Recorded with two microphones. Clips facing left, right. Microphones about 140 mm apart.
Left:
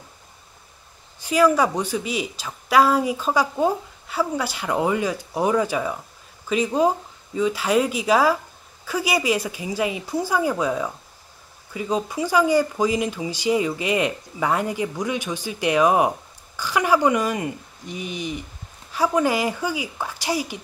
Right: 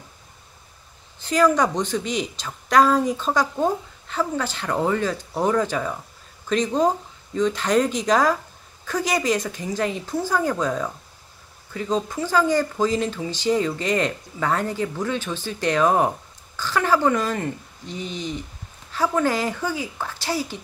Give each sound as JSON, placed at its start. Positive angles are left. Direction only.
{"t": 1.2, "sound": "speech", "side_deg": 10}